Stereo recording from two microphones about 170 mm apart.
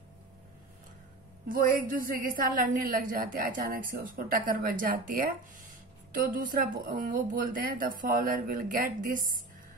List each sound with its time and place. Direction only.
1.5 s a woman's voice: 55° right (ahead or behind)